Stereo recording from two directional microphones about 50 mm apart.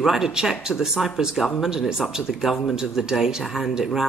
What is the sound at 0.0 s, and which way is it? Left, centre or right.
Speech, centre.